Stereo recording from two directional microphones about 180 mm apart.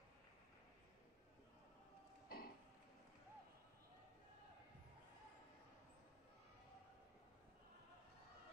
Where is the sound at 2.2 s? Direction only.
55° left (ahead or behind).